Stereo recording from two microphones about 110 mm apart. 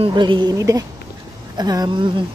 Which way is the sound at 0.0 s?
45° right (ahead or behind).